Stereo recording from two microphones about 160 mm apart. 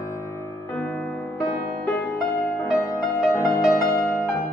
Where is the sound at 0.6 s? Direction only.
10° left (ahead or behind).